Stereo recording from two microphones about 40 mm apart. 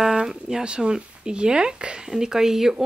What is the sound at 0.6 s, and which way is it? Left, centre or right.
Speech, right.